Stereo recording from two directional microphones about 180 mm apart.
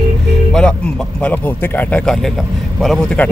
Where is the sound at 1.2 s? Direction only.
10° left (ahead or behind).